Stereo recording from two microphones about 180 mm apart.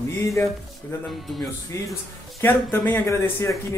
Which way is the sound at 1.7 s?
15° left (ahead or behind).